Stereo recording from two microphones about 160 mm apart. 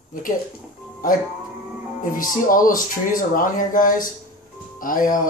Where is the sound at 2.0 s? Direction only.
60° left (ahead or behind).